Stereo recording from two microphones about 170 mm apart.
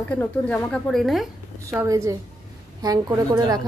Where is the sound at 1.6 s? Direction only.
20° right (ahead or behind).